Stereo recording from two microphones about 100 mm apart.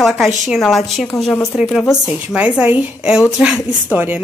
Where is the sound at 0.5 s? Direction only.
Centre (ahead or behind).